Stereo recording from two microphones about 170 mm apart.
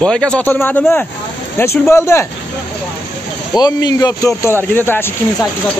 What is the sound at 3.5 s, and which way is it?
Speech, 25° left (ahead or behind).